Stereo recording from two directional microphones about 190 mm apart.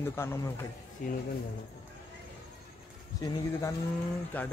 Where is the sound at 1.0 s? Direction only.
45° left (ahead or behind).